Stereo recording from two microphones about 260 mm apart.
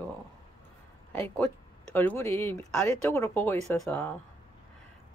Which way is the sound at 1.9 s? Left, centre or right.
Centre.